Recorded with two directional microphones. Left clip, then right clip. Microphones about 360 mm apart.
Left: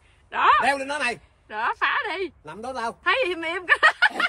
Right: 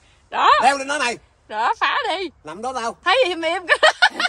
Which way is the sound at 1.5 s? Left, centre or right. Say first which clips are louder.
Right 4 dB; centre.